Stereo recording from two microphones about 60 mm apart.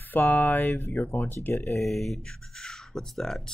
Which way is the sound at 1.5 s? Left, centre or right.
Left.